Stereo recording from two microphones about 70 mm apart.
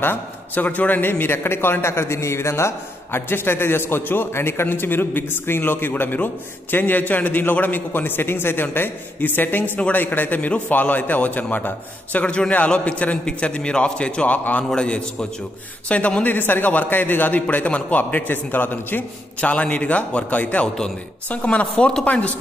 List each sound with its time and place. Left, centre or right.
0.0 s a man's voice: left
19.5 s a man's voice: centre
20.6 s a man's voice: centre